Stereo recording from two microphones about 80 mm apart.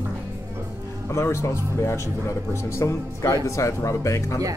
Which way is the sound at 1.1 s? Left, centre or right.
Left.